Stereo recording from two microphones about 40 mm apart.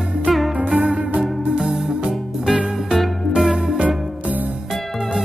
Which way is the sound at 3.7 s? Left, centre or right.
Right.